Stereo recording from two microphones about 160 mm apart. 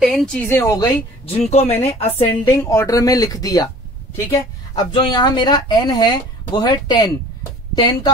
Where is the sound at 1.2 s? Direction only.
40° left (ahead or behind).